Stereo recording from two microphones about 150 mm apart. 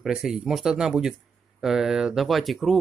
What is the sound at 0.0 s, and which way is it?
Speech, centre (ahead or behind).